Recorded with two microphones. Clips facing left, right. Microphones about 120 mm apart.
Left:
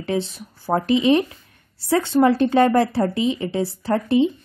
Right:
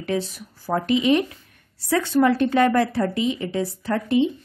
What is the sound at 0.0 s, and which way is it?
Speech, 25° left (ahead or behind).